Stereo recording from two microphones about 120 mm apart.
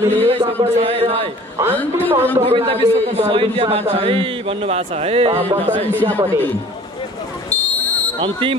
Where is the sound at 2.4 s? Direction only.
55° right (ahead or behind).